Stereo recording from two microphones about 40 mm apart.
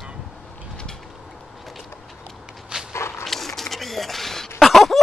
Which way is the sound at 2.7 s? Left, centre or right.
Right.